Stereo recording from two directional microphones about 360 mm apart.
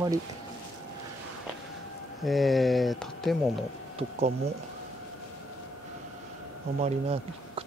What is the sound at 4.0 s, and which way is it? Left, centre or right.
Speech, centre.